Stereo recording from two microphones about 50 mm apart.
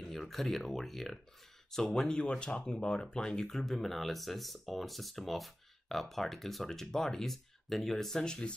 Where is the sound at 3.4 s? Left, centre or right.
Centre.